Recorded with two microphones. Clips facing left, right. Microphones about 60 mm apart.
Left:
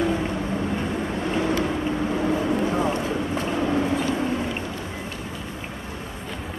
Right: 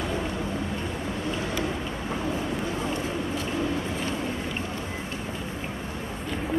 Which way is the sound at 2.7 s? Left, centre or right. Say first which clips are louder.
Left 5 dB; left.